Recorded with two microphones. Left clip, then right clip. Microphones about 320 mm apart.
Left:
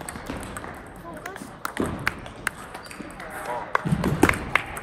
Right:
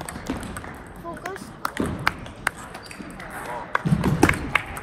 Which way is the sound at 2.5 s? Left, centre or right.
Centre.